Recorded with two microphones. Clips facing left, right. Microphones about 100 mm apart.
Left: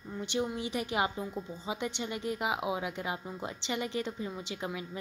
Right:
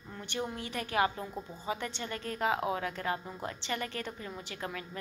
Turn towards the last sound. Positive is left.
turn(degrees=15)  # may be behind; listen again after turning